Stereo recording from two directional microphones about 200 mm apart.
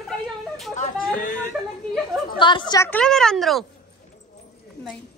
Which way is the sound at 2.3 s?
25° left (ahead or behind).